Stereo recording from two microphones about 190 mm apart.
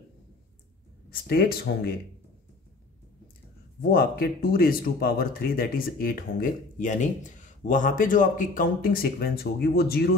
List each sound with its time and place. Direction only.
1.2 s speech: 55° left (ahead or behind)
3.9 s speech: 50° left (ahead or behind)